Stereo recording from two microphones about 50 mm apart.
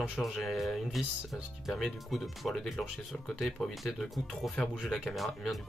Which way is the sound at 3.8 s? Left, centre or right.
Centre.